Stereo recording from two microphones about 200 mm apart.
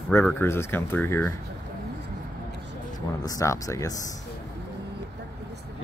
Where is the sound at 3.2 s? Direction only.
15° left (ahead or behind).